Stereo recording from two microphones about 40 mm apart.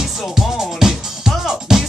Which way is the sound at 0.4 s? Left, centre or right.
Centre.